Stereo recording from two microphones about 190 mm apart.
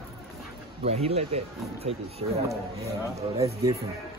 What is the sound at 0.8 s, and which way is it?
Speech, 35° right (ahead or behind).